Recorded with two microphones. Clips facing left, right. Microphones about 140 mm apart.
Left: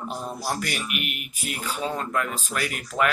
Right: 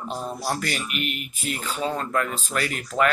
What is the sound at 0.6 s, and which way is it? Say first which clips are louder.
Speech: right 2 dB; 10° left (ahead or behind).